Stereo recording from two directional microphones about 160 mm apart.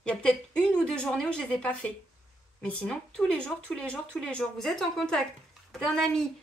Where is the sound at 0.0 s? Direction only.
5° left (ahead or behind).